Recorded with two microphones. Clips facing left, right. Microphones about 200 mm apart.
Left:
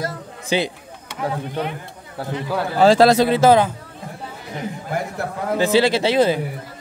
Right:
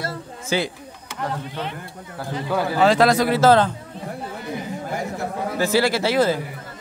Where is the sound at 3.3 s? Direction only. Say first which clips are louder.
Left 1 dB; 15° left (ahead or behind).